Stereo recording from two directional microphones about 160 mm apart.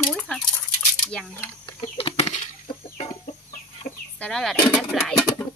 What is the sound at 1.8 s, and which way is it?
Bird flight, 40° left (ahead or behind).